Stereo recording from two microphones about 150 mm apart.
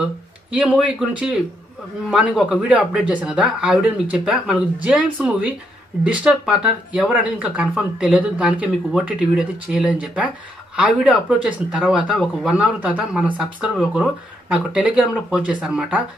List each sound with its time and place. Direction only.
0.5 s speech: 10° right (ahead or behind)